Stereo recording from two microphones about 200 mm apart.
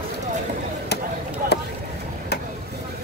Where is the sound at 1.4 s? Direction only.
45° right (ahead or behind).